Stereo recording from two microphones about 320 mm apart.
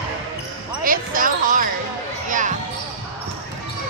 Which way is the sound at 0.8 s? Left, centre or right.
Right.